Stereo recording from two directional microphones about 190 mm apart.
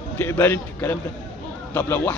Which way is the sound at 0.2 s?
15° left (ahead or behind).